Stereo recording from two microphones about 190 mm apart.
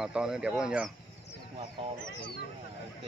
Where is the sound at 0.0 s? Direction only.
5° right (ahead or behind).